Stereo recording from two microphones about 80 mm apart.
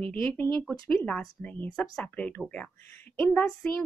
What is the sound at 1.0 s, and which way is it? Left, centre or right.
A woman's voice, centre.